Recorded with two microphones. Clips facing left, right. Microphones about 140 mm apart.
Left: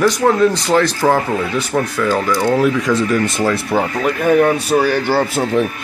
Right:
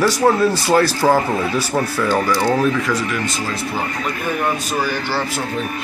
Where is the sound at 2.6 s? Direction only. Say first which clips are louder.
Left 3 dB; 20° left (ahead or behind).